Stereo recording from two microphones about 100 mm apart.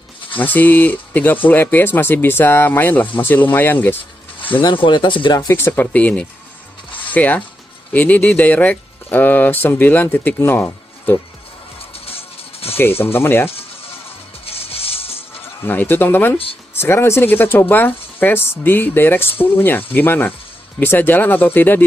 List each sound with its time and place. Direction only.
0.4 s speech: 20° left (ahead or behind)
4.6 s speech: 55° left (ahead or behind)
5.5 s speech: 20° left (ahead or behind)
11.8 s music: 75° left (ahead or behind)
13.0 s speech: 25° left (ahead or behind)
14.4 s music: 75° left (ahead or behind)
15.4 s speech: 20° left (ahead or behind)